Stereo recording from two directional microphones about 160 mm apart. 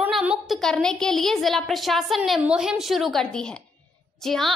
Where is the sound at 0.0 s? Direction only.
5° right (ahead or behind).